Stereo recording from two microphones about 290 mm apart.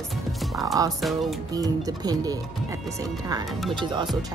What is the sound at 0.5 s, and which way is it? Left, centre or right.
Speech, centre.